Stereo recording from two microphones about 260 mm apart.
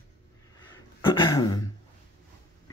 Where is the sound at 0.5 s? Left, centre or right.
Centre.